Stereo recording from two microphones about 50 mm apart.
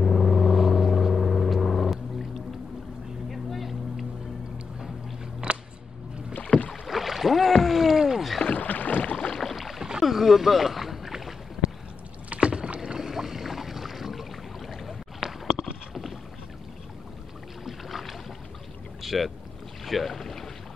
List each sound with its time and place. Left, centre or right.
0.0 s vehicle: centre
3.3 s vehicle: centre
5.4 s a sound: centre
6.7 s rowboat: centre
8.5 s rowboat: left
9.1 s boat: centre
9.6 s boat: centre
12.3 s rowboat: right
12.8 s a sound: centre
17.6 s boat: centre